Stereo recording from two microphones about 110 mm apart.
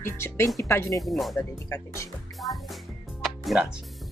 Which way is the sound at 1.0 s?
Centre (ahead or behind).